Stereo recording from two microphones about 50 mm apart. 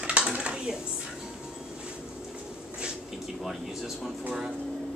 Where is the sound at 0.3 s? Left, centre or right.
Right.